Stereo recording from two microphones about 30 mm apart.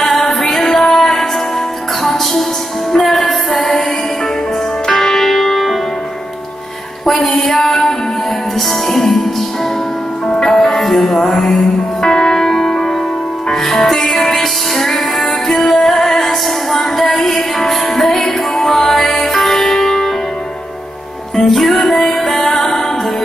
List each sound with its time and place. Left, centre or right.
0.0 s music: centre
4.8 s music: centre
7.5 s music: centre
10.4 s music: centre
21.5 s music: centre